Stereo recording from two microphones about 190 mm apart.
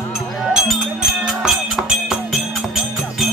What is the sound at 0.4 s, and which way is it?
Music, 5° right (ahead or behind).